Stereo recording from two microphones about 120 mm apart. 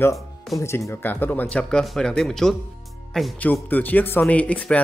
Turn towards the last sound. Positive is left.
turn(degrees=10)  # may be behind; listen again after turning